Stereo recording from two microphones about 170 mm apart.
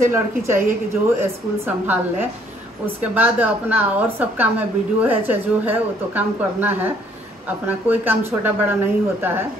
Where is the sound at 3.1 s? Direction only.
10° right (ahead or behind).